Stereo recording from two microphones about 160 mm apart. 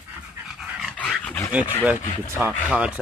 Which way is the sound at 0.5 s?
Centre (ahead or behind).